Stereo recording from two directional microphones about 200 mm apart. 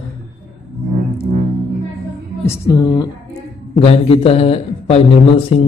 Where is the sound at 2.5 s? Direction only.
20° left (ahead or behind).